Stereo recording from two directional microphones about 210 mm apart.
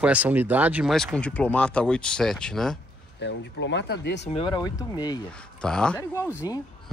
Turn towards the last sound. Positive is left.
turn(degrees=15)  # may be behind; listen again after turning